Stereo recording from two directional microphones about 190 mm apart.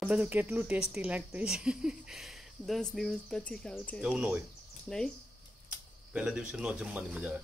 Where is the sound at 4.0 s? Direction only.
5° right (ahead or behind).